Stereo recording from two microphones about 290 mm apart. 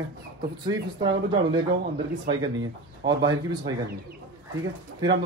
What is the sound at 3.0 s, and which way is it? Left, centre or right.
Speech, right.